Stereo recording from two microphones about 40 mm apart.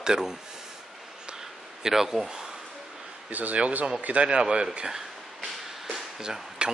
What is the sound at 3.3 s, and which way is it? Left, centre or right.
Speech, right.